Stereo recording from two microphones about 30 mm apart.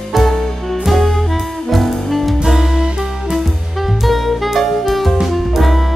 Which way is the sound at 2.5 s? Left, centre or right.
Centre.